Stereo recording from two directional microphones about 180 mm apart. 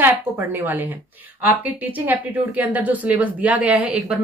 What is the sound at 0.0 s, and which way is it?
Speech, 10° right (ahead or behind).